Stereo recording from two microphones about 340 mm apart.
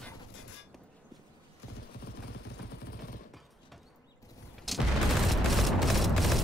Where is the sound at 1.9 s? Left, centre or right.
Left.